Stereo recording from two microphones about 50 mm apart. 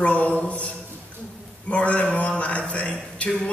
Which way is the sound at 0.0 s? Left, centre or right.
Left.